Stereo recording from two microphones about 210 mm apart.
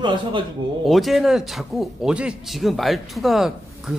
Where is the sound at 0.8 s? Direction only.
Centre (ahead or behind).